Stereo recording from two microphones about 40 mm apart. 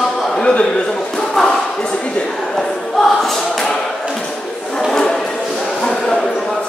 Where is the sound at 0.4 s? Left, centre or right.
Left.